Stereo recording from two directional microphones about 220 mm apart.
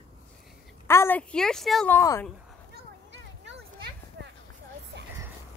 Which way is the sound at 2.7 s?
55° right (ahead or behind).